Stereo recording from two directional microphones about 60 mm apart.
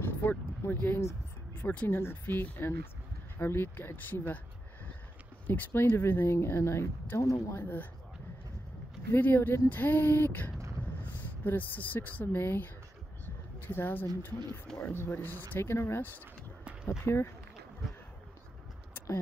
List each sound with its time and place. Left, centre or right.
0.0 s speech: left
5.5 s speech: left
7.2 s speech: left
7.5 s speech: left
9.1 s speech: left
15.6 s speech: left
17.0 s speech: left